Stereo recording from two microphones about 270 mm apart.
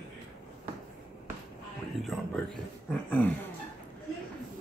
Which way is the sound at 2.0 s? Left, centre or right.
Centre.